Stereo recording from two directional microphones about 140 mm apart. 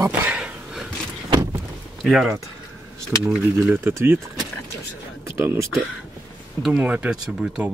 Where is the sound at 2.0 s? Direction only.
5° right (ahead or behind).